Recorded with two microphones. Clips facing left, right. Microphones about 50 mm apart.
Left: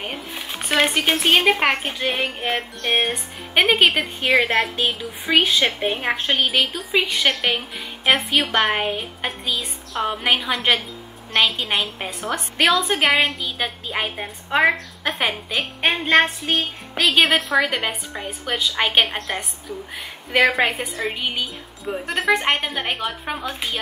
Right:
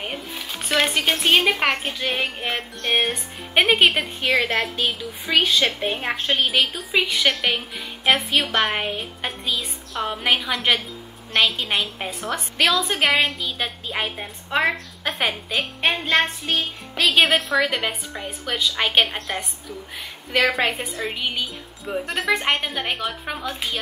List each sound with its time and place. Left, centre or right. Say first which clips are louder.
0.3 s a woman's voice: left 1 dB; centre
4.8 s speech: left 2 dB; centre
5.9 s a woman's voice: left 3 dB; centre
6.1 s speech: left 1 dB; centre
6.4 s a woman's voice: left 1 dB; centre
15.9 s speech: left 4 dB; centre
17.0 s a woman's voice: left 1 dB; centre
20.5 s a woman's voice: left 2 dB; centre